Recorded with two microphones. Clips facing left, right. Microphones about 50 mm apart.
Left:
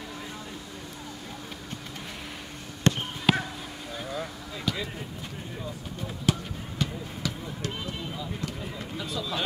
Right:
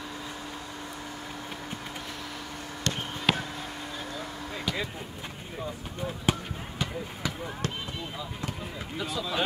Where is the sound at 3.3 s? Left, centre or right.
Centre.